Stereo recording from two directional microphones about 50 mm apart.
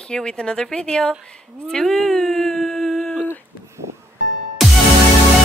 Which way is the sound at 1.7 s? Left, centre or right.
Centre.